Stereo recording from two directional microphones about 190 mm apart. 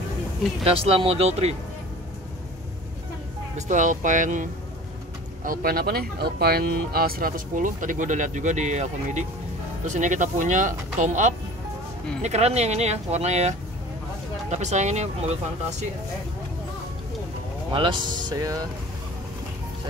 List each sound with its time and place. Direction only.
0.7 s speech: 30° right (ahead or behind)
3.5 s speech: 40° right (ahead or behind)
17.7 s speech: 25° right (ahead or behind)